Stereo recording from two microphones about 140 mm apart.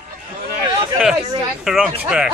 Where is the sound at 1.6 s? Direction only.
Centre (ahead or behind).